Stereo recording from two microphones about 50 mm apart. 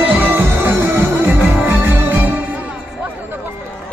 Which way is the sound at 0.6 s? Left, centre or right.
Right.